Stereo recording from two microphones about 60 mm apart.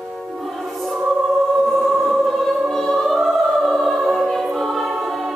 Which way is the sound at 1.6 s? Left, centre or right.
Centre.